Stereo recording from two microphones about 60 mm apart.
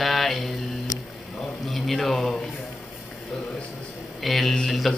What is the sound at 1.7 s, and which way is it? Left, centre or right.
Speech, centre.